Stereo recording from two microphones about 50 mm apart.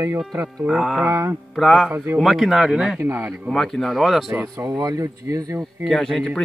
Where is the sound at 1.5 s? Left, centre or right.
Centre.